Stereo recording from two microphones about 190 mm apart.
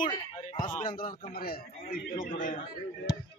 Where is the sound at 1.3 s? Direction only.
50° left (ahead or behind).